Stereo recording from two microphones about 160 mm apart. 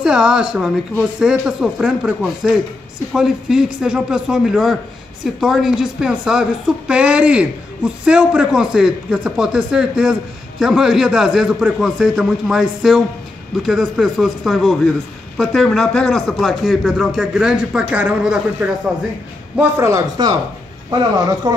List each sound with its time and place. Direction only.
0.0 s a man's voice: 5° right (ahead or behind)
19.8 s speech: 20° right (ahead or behind)